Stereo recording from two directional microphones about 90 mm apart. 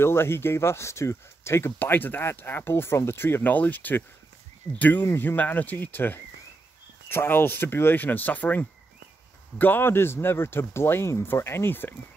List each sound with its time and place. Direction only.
0.0 s speech: 25° left (ahead or behind)